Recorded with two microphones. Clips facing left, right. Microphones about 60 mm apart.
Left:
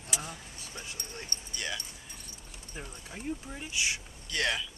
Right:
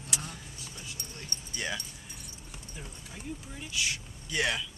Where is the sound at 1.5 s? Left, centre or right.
Right.